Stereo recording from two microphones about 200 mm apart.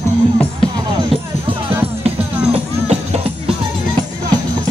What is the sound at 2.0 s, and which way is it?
Music, 30° right (ahead or behind).